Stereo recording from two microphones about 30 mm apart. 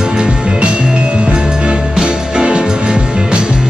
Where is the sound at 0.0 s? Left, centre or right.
Right.